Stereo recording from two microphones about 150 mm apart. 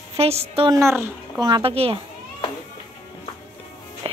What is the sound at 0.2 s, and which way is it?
Speech, 45° right (ahead or behind).